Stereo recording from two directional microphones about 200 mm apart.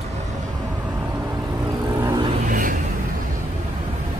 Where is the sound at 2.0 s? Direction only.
20° right (ahead or behind).